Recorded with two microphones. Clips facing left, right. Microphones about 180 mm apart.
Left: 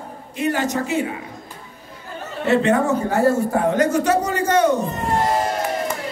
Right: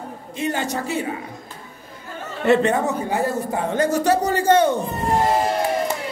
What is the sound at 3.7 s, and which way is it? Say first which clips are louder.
Speech: right 3 dB; 35° right (ahead or behind).